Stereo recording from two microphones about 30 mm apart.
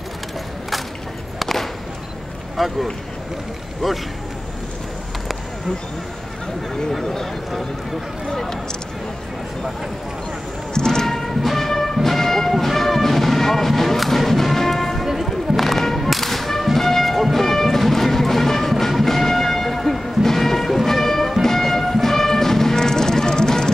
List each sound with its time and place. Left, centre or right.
1.4 s a sound: centre
2.5 s a man's voice: centre
10.7 s music: left
11.1 s music: centre